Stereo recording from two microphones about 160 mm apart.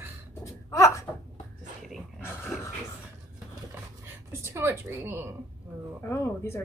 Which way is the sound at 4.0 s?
15° right (ahead or behind).